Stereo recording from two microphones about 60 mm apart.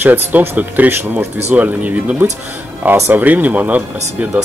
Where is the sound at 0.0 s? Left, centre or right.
Right.